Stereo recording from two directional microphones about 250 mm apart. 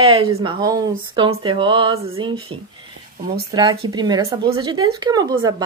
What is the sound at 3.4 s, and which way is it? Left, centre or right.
Speech, centre.